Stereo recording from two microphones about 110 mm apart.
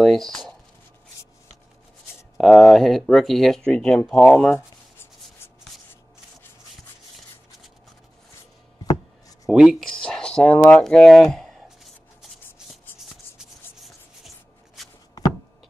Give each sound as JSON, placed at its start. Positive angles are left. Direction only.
{"t": 0.0, "sound": "speech", "side_deg": 5}
{"t": 2.3, "sound": "speech", "side_deg": 0}
{"t": 4.6, "sound": "writing", "side_deg": 20}
{"t": 9.5, "sound": "a sound", "side_deg": -5}
{"t": 12.9, "sound": "shuffle", "side_deg": 20}